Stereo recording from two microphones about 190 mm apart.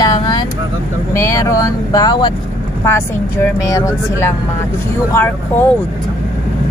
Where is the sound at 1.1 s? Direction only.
15° left (ahead or behind).